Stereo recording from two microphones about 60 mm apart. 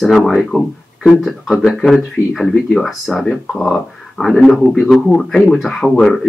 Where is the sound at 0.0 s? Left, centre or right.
Centre.